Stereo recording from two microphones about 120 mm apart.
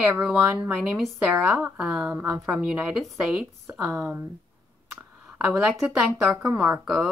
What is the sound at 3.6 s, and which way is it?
Speech, 15° right (ahead or behind).